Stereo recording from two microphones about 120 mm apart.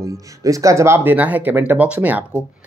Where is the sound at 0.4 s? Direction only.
30° right (ahead or behind).